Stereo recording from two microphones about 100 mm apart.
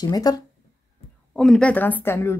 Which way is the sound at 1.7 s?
15° left (ahead or behind).